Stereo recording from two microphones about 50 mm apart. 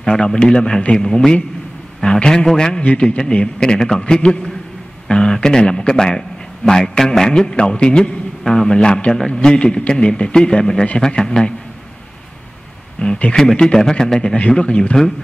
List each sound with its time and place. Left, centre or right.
0.0 s a man's voice: centre
13.0 s a man's voice: left